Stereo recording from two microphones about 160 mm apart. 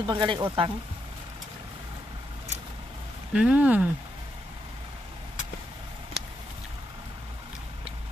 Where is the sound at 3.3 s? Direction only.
5° right (ahead or behind).